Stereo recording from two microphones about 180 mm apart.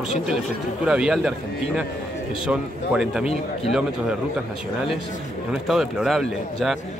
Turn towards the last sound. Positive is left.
turn(degrees=0)  # may be behind; listen again after turning